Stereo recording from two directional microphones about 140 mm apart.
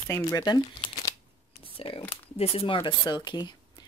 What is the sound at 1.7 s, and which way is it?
Speech, 40° left (ahead or behind).